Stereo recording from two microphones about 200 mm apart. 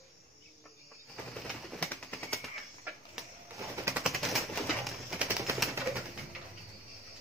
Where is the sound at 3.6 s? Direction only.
15° right (ahead or behind).